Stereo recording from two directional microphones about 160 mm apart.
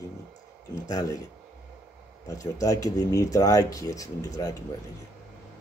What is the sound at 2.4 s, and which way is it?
Speech, 20° left (ahead or behind).